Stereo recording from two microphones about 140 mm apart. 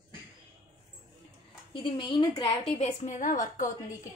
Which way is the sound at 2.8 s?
55° left (ahead or behind).